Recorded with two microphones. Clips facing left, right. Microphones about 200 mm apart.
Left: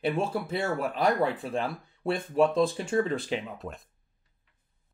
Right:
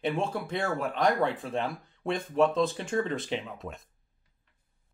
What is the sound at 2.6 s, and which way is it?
Speech, 30° left (ahead or behind).